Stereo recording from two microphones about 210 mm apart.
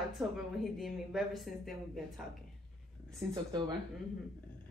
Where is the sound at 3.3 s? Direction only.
20° right (ahead or behind).